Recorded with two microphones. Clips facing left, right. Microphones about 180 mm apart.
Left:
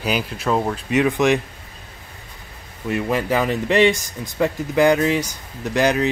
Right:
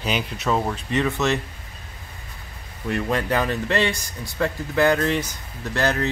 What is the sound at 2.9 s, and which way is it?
Speech, 5° left (ahead or behind).